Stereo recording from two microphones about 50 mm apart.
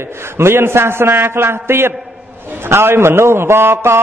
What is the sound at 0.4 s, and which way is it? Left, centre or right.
A man's voice, right.